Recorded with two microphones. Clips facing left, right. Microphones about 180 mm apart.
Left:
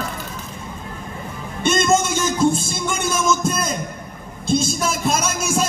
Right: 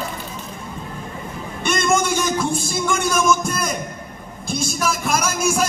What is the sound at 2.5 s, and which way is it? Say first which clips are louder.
Music: right 2 dB; 25° left (ahead or behind).